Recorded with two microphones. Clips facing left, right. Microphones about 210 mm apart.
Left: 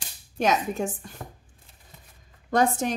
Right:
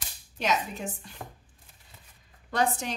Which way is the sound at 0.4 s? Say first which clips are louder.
Left 5 dB; 50° left (ahead or behind).